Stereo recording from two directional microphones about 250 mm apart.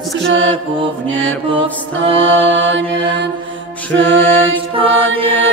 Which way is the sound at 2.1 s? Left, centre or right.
Right.